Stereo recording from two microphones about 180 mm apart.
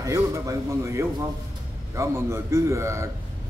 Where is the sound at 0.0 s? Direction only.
15° right (ahead or behind).